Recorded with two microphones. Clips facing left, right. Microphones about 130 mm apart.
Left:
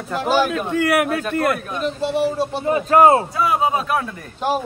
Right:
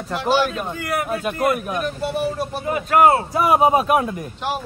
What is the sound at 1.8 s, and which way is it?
Speech, 25° left (ahead or behind).